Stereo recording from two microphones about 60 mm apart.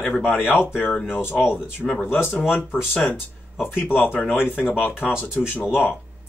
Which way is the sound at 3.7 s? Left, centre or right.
Left.